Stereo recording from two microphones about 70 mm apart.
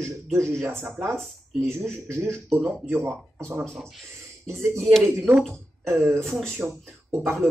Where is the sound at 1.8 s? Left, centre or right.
Right.